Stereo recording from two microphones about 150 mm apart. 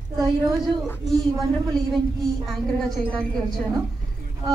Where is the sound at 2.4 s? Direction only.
Centre (ahead or behind).